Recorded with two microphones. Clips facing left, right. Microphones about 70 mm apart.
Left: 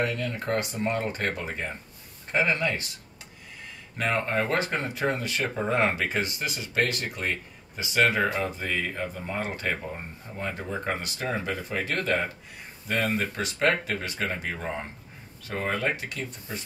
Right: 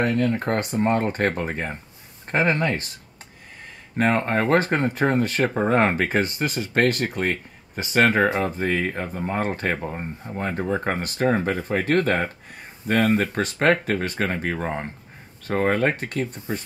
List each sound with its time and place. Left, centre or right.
0.0 s speech: right
4.0 s speech: right